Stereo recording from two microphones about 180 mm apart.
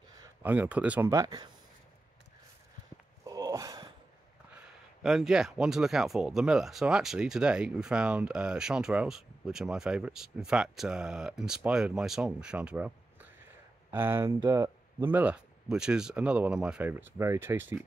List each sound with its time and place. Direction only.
0.4 s speech: 10° right (ahead or behind)
3.3 s a sound: 20° right (ahead or behind)
5.0 s speech: 5° right (ahead or behind)